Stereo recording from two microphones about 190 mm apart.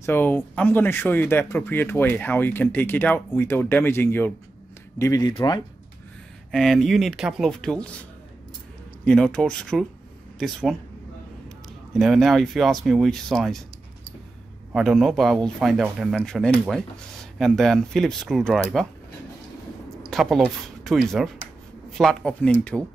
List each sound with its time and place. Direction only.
0.0 s speech: 10° left (ahead or behind)
6.5 s speech: centre (ahead or behind)
9.0 s speech: 5° left (ahead or behind)
14.7 s speech: centre (ahead or behind)
20.1 s speech: centre (ahead or behind)